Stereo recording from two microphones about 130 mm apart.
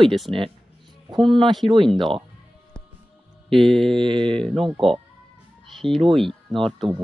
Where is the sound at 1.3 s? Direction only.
40° right (ahead or behind).